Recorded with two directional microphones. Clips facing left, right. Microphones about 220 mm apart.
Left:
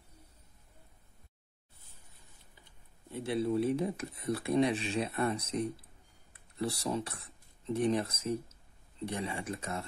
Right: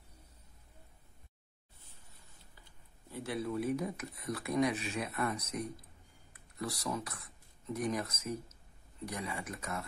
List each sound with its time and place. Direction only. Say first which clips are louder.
3.1 s speech: left 5 dB; 25° left (ahead or behind)